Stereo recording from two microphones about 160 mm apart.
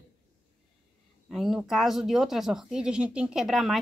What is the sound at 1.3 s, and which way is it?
Speech, centre (ahead or behind).